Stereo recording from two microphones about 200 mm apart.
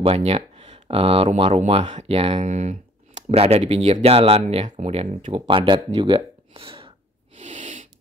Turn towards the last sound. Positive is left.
turn(degrees=-40)  # may be behind; listen again after turning